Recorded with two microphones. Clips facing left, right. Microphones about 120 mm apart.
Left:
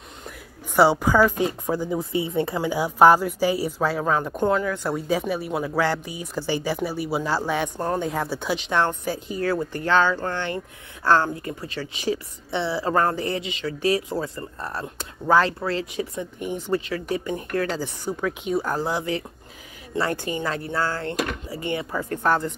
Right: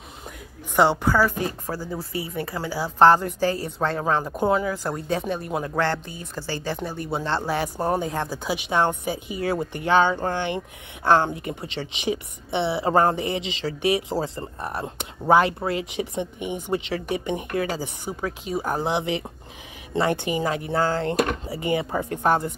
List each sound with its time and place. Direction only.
0.7 s speech: 10° left (ahead or behind); by 8.1 s 10° right (ahead or behind)
8.1 s speech: centre (ahead or behind)
18.2 s speech: centre (ahead or behind)
18.6 s speech: 15° right (ahead or behind)